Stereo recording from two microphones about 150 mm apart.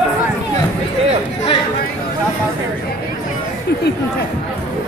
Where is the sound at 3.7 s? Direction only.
90° left.